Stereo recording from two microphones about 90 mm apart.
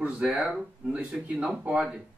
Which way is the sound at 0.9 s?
15° right (ahead or behind).